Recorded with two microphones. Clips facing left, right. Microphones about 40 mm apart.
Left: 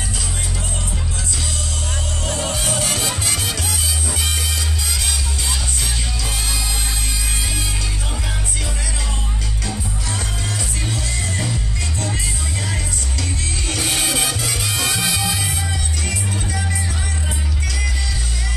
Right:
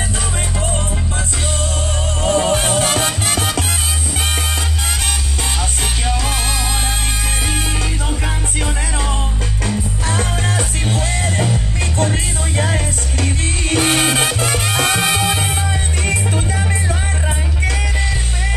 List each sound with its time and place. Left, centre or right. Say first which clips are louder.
2.2 s music: right 9 dB; right
9.7 s music: right 6 dB; right